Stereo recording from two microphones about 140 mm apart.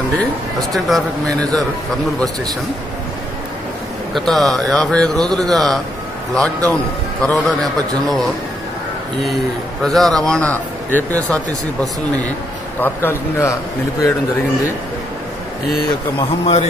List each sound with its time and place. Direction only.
0.8 s speech: centre (ahead or behind)
4.1 s a man's voice: centre (ahead or behind)
9.8 s a man's voice: centre (ahead or behind); by 13.6 s 20° left (ahead or behind)
16.2 s speech: 45° left (ahead or behind)